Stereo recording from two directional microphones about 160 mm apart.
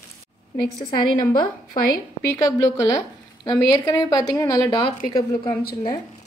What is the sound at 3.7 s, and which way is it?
Speech, 25° left (ahead or behind).